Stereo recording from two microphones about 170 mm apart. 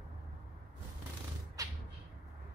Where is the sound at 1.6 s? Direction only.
20° right (ahead or behind).